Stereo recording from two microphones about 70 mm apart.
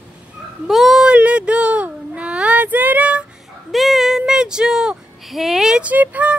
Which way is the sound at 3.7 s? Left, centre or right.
Centre.